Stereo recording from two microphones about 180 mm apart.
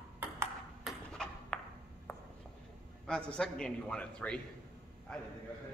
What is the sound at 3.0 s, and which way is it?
A man's voice, 5° left (ahead or behind).